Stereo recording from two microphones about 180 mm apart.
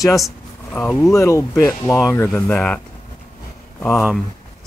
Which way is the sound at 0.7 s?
10° left (ahead or behind).